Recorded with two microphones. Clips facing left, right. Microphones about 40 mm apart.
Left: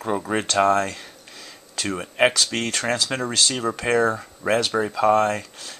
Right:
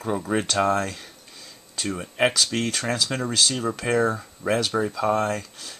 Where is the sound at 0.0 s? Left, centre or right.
Centre.